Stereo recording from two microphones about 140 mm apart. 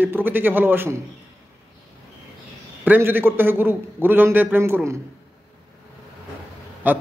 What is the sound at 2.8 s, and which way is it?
A man's voice, 15° right (ahead or behind).